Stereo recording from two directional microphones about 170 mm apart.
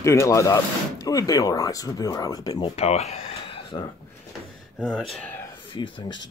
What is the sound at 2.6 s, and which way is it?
Speech, 40° left (ahead or behind).